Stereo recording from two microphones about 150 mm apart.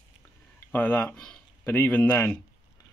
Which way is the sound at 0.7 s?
10° left (ahead or behind).